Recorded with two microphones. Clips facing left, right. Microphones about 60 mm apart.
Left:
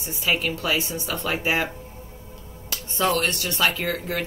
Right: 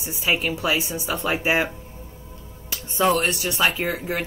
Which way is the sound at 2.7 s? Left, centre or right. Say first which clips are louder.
Right 3 dB; centre.